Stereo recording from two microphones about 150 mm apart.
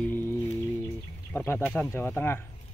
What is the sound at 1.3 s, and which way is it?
Speech, 15° left (ahead or behind).